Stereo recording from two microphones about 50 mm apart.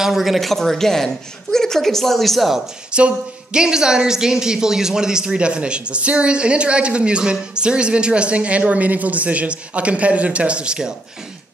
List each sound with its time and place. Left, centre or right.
0.0 s a woman's voice: centre
2.9 s a man's voice: right